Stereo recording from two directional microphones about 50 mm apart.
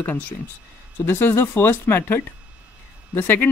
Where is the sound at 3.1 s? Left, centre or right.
Left.